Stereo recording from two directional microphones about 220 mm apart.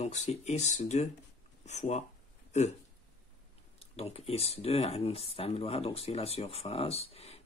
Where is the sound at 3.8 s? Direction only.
25° left (ahead or behind).